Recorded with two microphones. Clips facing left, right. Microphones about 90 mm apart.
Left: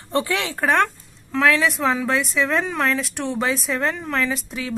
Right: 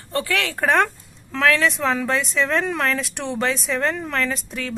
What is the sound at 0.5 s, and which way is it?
Speech, centre (ahead or behind).